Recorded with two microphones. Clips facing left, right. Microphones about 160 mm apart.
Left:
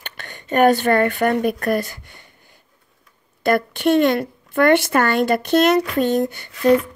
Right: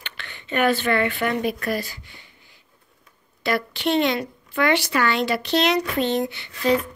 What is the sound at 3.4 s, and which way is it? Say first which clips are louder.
Speech: left 6 dB; 50° left (ahead or behind).